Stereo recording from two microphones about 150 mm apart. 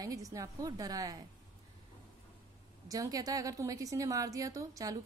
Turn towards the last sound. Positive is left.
turn(degrees=-25)  # may be behind; listen again after turning